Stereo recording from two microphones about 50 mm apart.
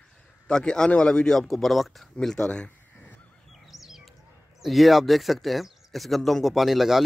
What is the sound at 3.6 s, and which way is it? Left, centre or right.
Bird, centre.